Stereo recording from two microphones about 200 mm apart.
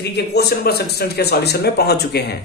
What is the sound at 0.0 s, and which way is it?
A man's voice, 55° left (ahead or behind).